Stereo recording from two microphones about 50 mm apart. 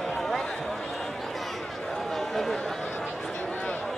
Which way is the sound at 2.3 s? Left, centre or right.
Centre.